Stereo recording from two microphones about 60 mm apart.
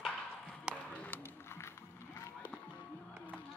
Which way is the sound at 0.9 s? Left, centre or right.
Left.